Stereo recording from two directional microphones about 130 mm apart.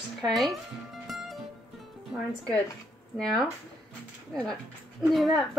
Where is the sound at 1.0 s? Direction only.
Centre (ahead or behind).